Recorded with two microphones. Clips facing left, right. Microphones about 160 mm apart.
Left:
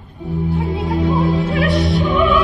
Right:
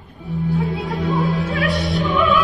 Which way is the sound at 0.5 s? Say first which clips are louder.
Left 3 dB; 20° left (ahead or behind).